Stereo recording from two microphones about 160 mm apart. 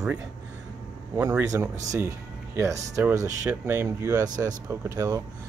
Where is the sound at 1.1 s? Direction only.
15° right (ahead or behind).